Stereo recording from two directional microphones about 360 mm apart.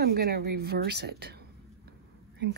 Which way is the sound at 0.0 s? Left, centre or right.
Right.